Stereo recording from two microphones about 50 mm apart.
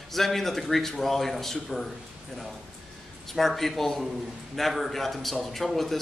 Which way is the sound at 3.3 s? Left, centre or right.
Centre.